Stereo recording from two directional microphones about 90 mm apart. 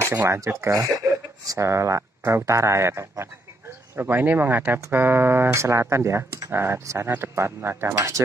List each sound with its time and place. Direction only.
0.0 s speech: 25° right (ahead or behind)